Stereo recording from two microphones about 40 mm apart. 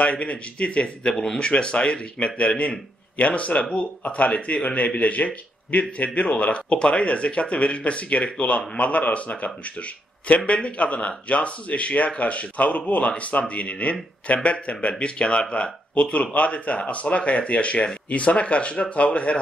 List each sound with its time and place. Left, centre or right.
0.0 s a man's voice: left
1.1 s speech: centre
1.4 s a man's voice: left